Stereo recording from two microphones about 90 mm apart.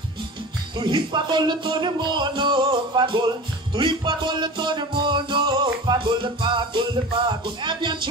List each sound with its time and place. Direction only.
0.7 s music: 60° right (ahead or behind)